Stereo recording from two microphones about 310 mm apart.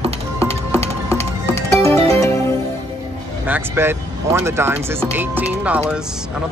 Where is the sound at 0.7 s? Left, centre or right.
Centre.